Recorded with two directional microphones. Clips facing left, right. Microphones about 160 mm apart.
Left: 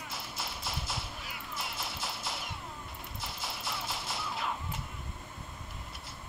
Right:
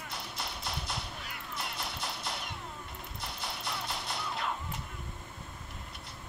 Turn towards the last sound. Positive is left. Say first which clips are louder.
# right 1 dB
turn(degrees=5)  # may be behind; listen again after turning